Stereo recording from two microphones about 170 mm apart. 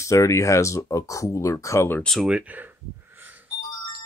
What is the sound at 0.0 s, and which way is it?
Speech, 15° left (ahead or behind).